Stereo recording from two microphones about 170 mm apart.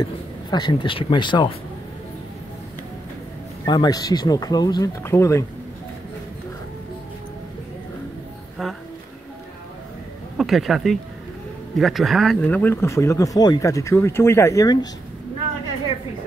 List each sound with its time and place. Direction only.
0.0 s speech: 25° left (ahead or behind)
3.6 s speech: 25° left (ahead or behind)
10.3 s speech: centre (ahead or behind); by 14.9 s 20° left (ahead or behind)